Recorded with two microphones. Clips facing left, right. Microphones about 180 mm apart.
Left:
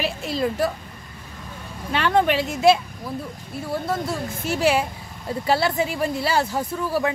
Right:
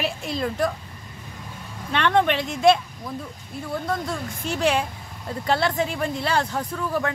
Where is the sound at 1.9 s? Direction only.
5° left (ahead or behind).